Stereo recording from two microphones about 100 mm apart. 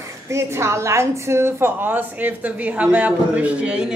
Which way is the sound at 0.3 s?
30° right (ahead or behind).